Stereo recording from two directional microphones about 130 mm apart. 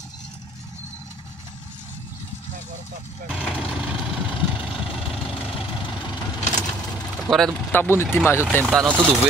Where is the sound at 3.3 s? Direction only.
5° right (ahead or behind).